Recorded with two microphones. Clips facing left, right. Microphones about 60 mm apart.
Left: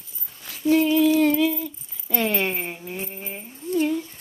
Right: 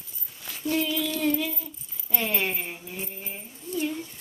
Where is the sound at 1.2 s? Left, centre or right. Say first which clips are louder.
Left 7 dB; left.